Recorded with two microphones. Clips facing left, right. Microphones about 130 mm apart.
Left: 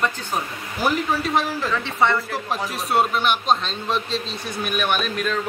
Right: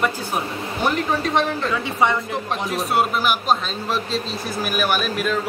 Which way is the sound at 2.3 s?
Centre (ahead or behind).